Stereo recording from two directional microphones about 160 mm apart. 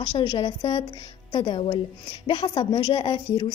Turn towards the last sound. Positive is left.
turn(degrees=30)  # may be behind; listen again after turning